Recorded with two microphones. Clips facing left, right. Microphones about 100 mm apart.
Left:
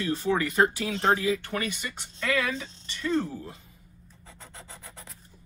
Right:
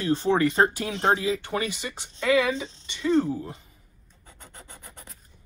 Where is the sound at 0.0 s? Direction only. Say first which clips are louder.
Right 4 dB; 30° right (ahead or behind).